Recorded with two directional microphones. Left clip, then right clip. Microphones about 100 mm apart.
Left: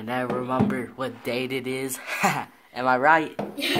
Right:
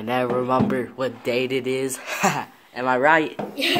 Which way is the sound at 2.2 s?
20° left (ahead or behind).